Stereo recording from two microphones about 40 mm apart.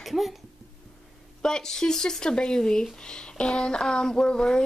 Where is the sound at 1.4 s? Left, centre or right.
Centre.